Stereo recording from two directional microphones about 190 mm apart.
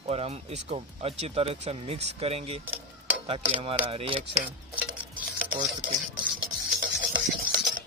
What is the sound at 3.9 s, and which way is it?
Speech, 30° right (ahead or behind).